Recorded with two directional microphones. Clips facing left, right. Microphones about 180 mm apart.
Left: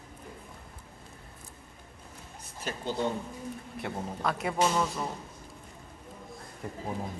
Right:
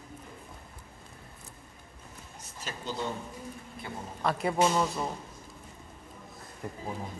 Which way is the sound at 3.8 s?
75° left (ahead or behind).